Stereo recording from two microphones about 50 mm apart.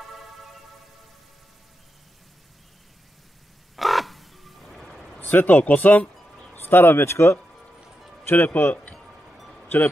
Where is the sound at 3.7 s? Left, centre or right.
Centre.